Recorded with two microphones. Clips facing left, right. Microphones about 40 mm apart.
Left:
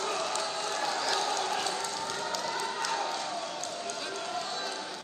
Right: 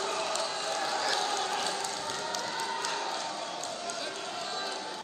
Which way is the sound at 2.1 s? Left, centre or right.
Left.